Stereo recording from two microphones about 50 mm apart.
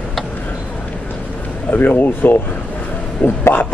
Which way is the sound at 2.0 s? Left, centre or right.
Left.